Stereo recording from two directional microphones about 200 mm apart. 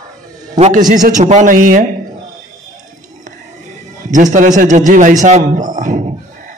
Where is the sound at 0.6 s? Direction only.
40° right (ahead or behind).